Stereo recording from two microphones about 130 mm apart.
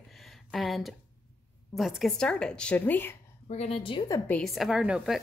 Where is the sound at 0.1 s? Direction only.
Centre (ahead or behind).